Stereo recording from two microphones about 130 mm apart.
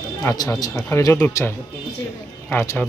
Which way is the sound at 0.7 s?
20° left (ahead or behind).